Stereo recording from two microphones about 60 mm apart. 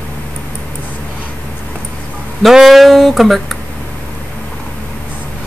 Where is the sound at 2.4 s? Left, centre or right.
Centre.